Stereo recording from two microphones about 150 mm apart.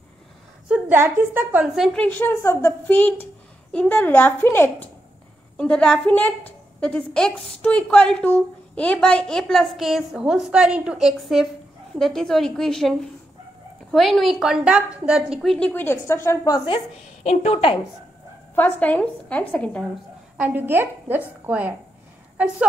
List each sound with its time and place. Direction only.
0.7 s a woman's voice: 10° right (ahead or behind)
2.0 s a woman's voice: 15° left (ahead or behind)
5.6 s a woman's voice: 5° left (ahead or behind)
13.9 s a woman's voice: centre (ahead or behind)
15.7 s a woman's voice: 15° left (ahead or behind); by 17.7 s 40° left (ahead or behind)
18.5 s a woman's voice: 10° left (ahead or behind)
20.3 s a woman's voice: 10° right (ahead or behind)